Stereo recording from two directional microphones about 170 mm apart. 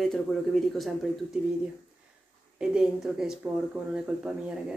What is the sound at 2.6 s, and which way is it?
Speech, 5° right (ahead or behind).